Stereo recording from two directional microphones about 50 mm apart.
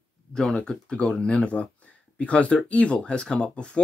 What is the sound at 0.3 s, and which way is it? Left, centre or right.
Speech, centre.